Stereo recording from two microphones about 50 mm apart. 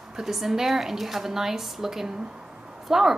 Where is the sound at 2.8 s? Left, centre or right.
Centre.